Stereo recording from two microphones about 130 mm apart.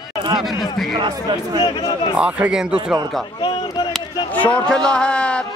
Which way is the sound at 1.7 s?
30° left (ahead or behind).